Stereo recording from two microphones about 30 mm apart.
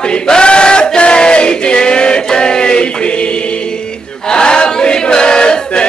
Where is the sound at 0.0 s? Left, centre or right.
Left.